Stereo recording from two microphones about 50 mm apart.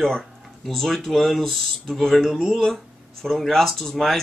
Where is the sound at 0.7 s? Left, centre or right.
Centre.